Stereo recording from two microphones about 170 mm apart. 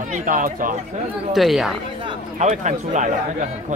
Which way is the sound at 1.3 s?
Centre (ahead or behind).